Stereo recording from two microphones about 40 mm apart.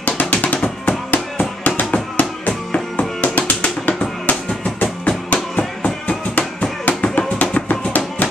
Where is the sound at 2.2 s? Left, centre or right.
Left.